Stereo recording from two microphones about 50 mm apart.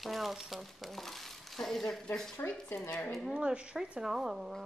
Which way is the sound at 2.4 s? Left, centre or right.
Left.